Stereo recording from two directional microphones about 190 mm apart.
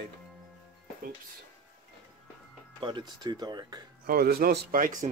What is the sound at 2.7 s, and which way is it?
Speech, 25° right (ahead or behind).